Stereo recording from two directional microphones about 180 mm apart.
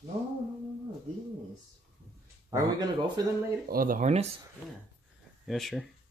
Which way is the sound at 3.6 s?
50° right (ahead or behind).